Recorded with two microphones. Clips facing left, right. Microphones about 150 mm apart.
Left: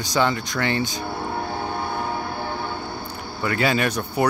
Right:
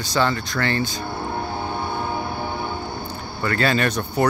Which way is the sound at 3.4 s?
10° left (ahead or behind).